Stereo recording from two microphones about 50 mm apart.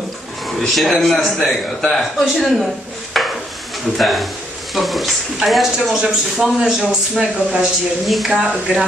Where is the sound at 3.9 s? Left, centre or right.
Centre.